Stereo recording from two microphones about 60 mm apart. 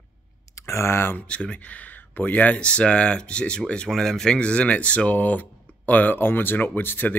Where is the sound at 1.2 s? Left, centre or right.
Centre.